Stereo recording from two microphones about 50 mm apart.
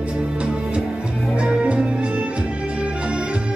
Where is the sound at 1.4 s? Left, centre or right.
Right.